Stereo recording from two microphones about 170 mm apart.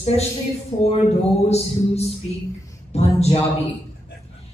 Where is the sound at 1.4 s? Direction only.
40° left (ahead or behind).